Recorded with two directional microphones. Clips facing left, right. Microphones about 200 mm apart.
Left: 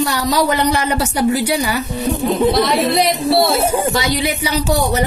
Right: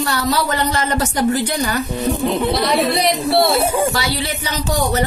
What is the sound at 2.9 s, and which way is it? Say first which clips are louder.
Speech: left 2 dB; centre (ahead or behind).